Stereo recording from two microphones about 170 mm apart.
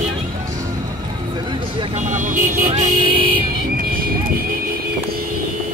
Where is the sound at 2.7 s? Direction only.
30° right (ahead or behind).